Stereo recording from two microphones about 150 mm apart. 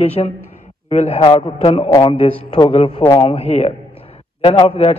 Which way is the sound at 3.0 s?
30° left (ahead or behind).